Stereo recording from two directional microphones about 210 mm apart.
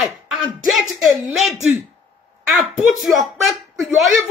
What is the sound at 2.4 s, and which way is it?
Speech, centre (ahead or behind).